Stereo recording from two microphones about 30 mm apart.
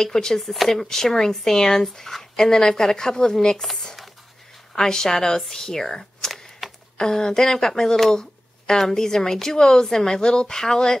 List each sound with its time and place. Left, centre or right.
0.0 s a woman's voice: centre
0.4 s a woman's voice: centre; by 3.3 s left
3.6 s a woman's voice: centre
6.6 s a sound: centre
7.0 s a woman's voice: left